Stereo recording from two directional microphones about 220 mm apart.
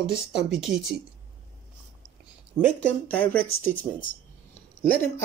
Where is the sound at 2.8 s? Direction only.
5° left (ahead or behind).